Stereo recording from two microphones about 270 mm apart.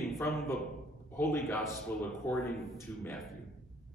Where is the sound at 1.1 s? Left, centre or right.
Centre.